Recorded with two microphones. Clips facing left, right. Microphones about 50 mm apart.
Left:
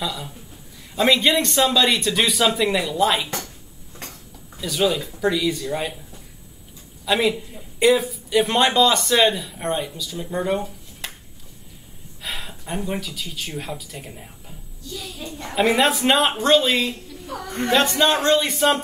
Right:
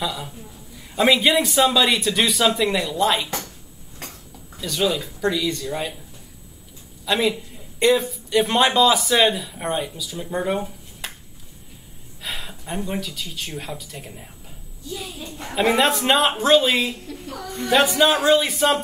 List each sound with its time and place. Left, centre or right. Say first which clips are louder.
0.0 s a man's voice: right 1 dB; centre
4.6 s a man's voice: left 1 dB; centre
7.1 s a man's voice: left 1 dB; centre
12.2 s speech: even; centre
14.8 s speech: right 2 dB; centre
15.4 s a man's voice: even; centre